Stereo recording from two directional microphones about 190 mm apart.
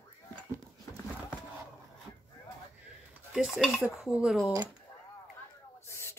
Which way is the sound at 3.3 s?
Centre (ahead or behind).